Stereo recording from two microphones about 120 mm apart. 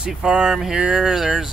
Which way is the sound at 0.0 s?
5° right (ahead or behind).